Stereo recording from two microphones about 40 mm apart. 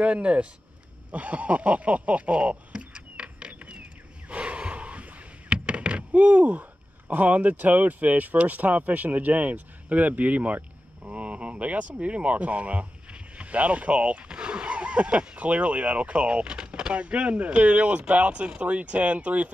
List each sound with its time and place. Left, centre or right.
0.0 s speech: right
1.1 s a sound: right
4.3 s gasp: right
5.5 s speech: right
16.9 s speech: right